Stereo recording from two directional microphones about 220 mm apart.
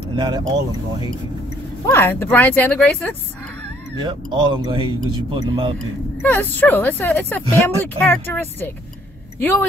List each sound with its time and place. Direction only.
0.1 s speech: 20° right (ahead or behind)
1.9 s speech: 10° left (ahead or behind)
4.0 s speech: 20° right (ahead or behind)
6.2 s speech: 10° left (ahead or behind)